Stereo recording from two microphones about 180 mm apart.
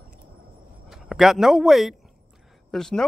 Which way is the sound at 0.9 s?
Centre (ahead or behind).